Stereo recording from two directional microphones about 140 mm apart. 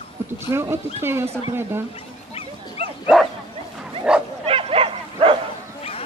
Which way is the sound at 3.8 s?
5° right (ahead or behind).